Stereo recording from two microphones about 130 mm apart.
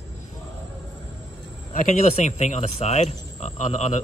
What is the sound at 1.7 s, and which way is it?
Speech, 65° left (ahead or behind).